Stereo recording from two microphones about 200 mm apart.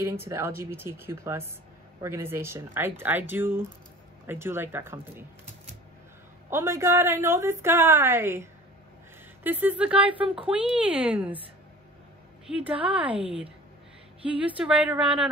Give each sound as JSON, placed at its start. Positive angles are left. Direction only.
{"t": 0.0, "sound": "a woman's voice", "side_deg": -15}
{"t": 6.5, "sound": "a woman's voice", "side_deg": -15}
{"t": 12.8, "sound": "a woman's voice", "side_deg": -5}
{"t": 13.2, "sound": "a woman's voice", "side_deg": -30}
{"t": 14.4, "sound": "a woman's voice", "side_deg": -5}